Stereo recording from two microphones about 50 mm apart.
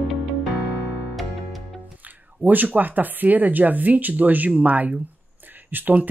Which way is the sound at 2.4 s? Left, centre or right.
Right.